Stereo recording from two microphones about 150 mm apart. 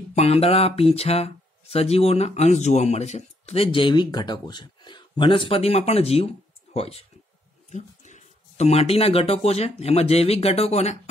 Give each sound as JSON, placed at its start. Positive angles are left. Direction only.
{"t": 0.1, "sound": "speech", "side_deg": 45}